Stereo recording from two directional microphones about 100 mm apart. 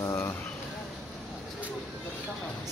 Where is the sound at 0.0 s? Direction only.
30° left (ahead or behind).